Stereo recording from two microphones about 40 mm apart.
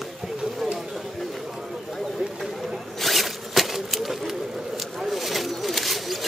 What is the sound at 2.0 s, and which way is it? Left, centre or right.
Zipper, centre.